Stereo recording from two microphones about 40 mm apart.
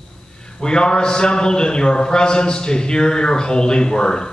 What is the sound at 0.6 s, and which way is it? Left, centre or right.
A man's voice, left.